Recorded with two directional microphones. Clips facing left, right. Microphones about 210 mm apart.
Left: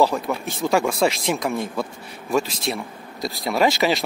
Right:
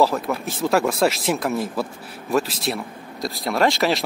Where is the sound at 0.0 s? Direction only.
Centre (ahead or behind).